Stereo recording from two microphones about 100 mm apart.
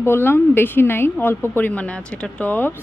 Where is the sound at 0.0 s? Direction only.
25° left (ahead or behind).